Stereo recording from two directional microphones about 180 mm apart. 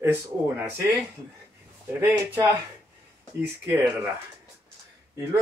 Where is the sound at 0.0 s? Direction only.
10° right (ahead or behind).